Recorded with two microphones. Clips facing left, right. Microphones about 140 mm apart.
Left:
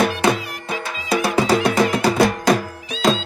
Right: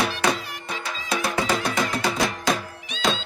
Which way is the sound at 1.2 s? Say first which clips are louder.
Left 7 dB; 35° left (ahead or behind).